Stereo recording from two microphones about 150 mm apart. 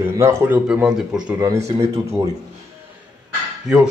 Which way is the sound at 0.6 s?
5° right (ahead or behind).